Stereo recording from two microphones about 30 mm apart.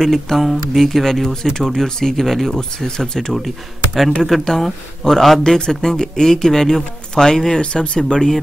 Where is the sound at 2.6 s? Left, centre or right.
Left.